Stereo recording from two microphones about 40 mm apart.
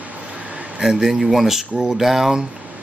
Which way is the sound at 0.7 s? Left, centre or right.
Centre.